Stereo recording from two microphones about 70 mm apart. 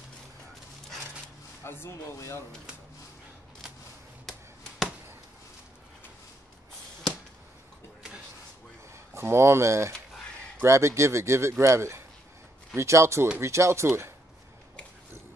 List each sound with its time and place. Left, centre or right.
1.6 s speech: left
8.9 s speech: right